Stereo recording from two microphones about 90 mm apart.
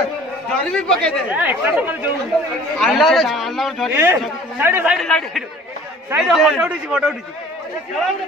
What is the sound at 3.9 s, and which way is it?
Speech, 30° right (ahead or behind).